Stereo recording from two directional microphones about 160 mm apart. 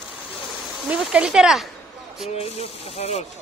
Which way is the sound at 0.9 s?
5° right (ahead or behind).